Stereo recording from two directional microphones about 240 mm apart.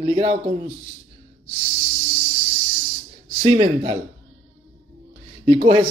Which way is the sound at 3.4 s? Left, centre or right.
Right.